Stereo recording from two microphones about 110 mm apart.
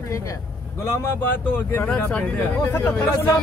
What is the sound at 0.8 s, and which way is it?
Speech, 25° left (ahead or behind).